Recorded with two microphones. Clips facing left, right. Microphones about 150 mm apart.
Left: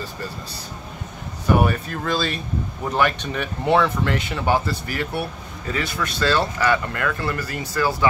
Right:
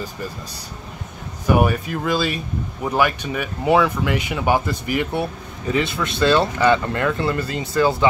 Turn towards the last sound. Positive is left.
turn(degrees=-20)  # may be behind; listen again after turning